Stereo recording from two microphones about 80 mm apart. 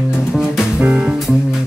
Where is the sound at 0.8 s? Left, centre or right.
Centre.